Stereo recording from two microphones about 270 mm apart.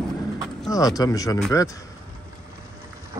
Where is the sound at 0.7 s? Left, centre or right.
Centre.